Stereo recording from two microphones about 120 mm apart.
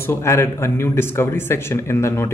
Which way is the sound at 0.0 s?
20° left (ahead or behind).